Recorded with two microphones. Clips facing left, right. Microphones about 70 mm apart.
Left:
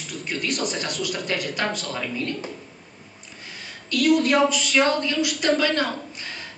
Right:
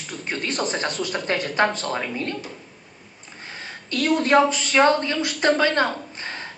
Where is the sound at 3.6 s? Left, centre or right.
Right.